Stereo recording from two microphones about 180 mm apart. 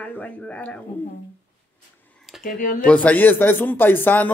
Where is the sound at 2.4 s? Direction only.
50° left (ahead or behind).